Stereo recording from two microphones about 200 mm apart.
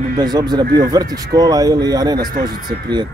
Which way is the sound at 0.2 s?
20° right (ahead or behind).